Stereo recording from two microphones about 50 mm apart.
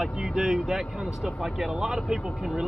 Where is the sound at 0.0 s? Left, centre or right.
Centre.